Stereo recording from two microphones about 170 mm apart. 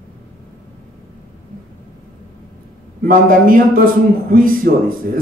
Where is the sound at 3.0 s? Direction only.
55° right (ahead or behind).